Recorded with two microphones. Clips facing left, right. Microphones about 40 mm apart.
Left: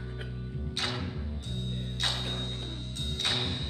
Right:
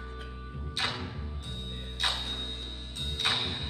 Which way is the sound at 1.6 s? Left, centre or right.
Centre.